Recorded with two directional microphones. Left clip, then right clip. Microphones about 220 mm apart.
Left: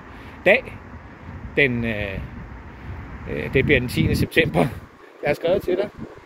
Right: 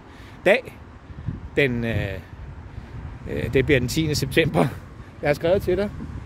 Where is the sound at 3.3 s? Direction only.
20° right (ahead or behind).